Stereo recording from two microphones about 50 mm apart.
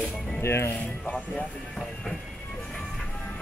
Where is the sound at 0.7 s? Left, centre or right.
Left.